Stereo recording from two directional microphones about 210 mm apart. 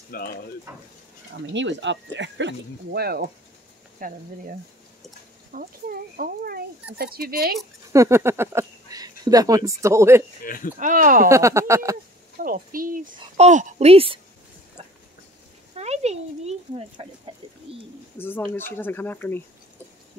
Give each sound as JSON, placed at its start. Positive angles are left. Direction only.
{"t": 0.1, "sound": "speech", "side_deg": 45}
{"t": 1.3, "sound": "speech", "side_deg": -60}
{"t": 5.5, "sound": "speech", "side_deg": -40}
{"t": 7.9, "sound": "speech", "side_deg": -15}
{"t": 10.4, "sound": "speech", "side_deg": 40}
{"t": 10.8, "sound": "speech", "side_deg": -40}
{"t": 11.2, "sound": "speech", "side_deg": -15}
{"t": 12.4, "sound": "a child's voice", "side_deg": -40}
{"t": 15.7, "sound": "a child's voice", "side_deg": -30}
{"t": 18.1, "sound": "speech", "side_deg": 10}